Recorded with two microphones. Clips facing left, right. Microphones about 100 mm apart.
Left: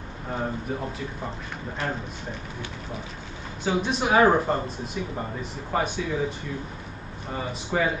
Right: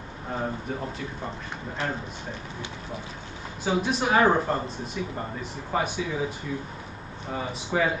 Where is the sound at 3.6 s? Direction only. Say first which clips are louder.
Even; centre (ahead or behind).